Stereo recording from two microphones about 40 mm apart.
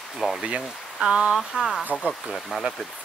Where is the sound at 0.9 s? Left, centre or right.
Right.